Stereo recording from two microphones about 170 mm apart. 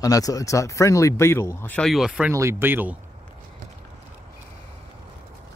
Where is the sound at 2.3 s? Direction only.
15° right (ahead or behind).